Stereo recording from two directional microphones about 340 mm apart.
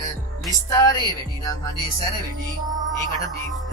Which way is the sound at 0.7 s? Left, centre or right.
Centre.